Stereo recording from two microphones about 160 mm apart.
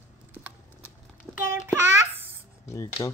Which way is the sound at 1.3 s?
Centre (ahead or behind).